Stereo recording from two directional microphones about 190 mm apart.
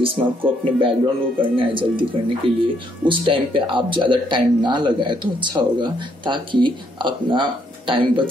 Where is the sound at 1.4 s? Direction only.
25° right (ahead or behind).